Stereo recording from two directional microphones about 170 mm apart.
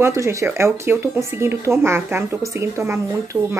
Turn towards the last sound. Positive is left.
turn(degrees=-15)  # may be behind; listen again after turning